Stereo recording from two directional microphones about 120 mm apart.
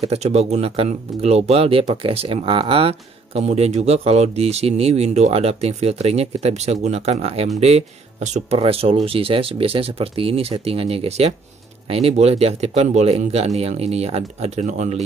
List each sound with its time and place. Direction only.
0.0 s speech: 60° right (ahead or behind); by 8.5 s 75° right (ahead or behind)
8.5 s speech: 55° right (ahead or behind); by 15.0 s 75° right (ahead or behind)